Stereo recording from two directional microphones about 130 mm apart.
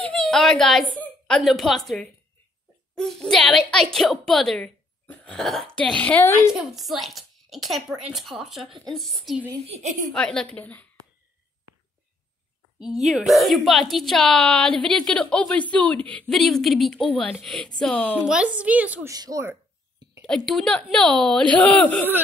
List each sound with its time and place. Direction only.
0.0 s a child's voice: 5° left (ahead or behind)
6.2 s a woman's voice: 20° left (ahead or behind)
6.5 s a child's voice: centre (ahead or behind)
9.7 s a woman's voice: 60° right (ahead or behind)
10.1 s speech: 5° left (ahead or behind)
12.7 s a woman's voice: centre (ahead or behind)
18.2 s a woman's voice: 5° right (ahead or behind)
19.0 s speech: 25° right (ahead or behind)
20.2 s a woman's voice: 5° left (ahead or behind)